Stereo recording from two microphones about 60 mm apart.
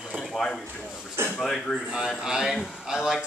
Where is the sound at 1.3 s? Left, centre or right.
Centre.